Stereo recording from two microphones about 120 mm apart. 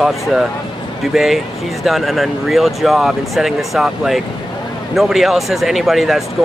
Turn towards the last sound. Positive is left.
turn(degrees=0)  # may be behind; listen again after turning